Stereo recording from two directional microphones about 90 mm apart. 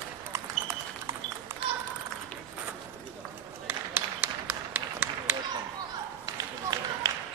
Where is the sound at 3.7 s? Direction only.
20° right (ahead or behind).